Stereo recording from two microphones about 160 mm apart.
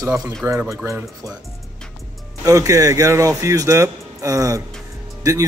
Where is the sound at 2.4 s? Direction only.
20° right (ahead or behind).